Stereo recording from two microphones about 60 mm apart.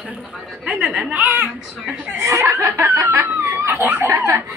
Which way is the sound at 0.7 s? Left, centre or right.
Centre.